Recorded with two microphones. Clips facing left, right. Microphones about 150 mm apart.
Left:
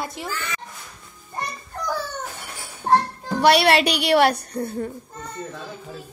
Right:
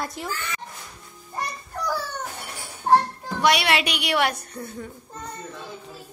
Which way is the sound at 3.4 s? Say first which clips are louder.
Left 5 dB; 35° left (ahead or behind).